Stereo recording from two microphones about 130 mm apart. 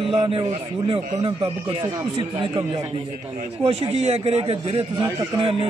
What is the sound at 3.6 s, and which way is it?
A man's voice, 55° right (ahead or behind).